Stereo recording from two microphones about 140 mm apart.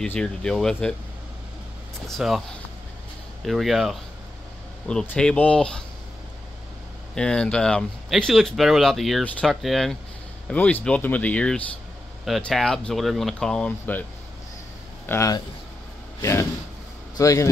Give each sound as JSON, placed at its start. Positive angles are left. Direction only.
{"t": 0.0, "sound": "speech", "side_deg": 5}
{"t": 2.0, "sound": "speech", "side_deg": 0}
{"t": 3.4, "sound": "speech", "side_deg": 0}
{"t": 5.0, "sound": "speech", "side_deg": 10}
{"t": 7.2, "sound": "speech", "side_deg": 5}
{"t": 15.0, "sound": "speech", "side_deg": 20}